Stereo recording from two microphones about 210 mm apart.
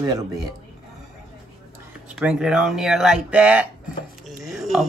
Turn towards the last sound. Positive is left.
turn(degrees=0)  # may be behind; listen again after turning